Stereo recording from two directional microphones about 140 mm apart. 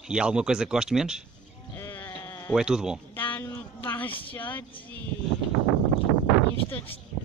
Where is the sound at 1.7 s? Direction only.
15° left (ahead or behind).